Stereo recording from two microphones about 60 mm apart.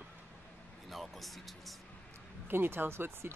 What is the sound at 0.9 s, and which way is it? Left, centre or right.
Speech, centre.